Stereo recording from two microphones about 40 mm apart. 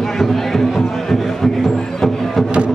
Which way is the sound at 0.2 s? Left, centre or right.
Centre.